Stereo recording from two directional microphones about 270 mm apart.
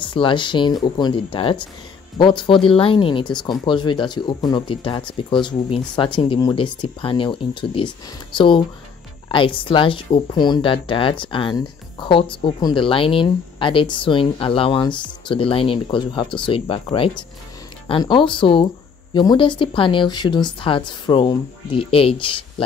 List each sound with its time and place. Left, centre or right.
0.0 s speech: centre